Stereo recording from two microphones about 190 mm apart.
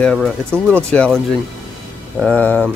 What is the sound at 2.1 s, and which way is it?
Speech, 5° left (ahead or behind).